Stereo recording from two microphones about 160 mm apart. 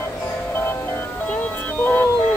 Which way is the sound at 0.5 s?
15° left (ahead or behind).